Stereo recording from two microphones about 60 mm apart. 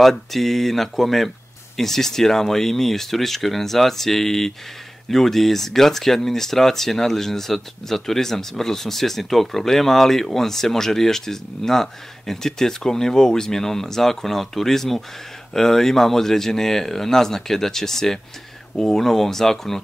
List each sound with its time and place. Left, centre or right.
0.0 s speech: centre